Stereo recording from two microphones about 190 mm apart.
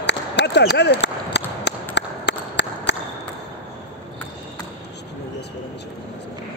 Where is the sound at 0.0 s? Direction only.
65° left (ahead or behind).